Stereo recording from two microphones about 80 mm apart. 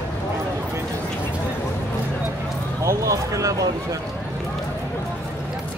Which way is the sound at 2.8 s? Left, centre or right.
Right.